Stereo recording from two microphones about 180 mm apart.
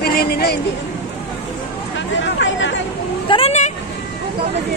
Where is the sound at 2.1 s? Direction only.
90° left.